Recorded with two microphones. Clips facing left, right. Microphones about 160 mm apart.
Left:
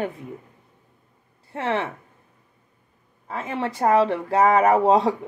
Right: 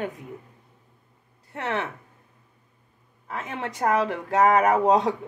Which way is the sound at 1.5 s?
25° left (ahead or behind).